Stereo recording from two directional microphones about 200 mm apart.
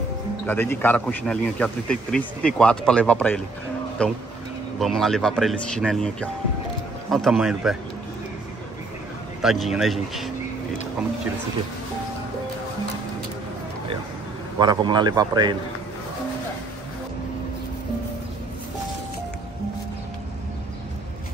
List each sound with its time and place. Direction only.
0.5 s a man's voice: 10° left (ahead or behind)
9.4 s a man's voice: centre (ahead or behind)
14.6 s a man's voice: 20° right (ahead or behind)